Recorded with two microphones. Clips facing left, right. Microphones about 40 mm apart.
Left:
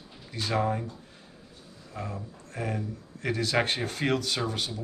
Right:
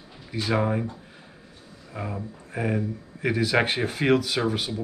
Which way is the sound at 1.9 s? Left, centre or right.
Centre.